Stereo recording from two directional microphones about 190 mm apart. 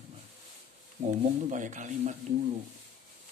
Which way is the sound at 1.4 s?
40° right (ahead or behind).